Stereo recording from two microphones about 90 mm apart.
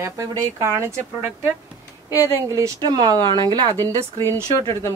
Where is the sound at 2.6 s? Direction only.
45° right (ahead or behind).